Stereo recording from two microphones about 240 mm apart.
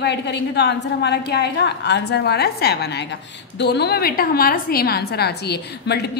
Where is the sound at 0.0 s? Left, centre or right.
Left.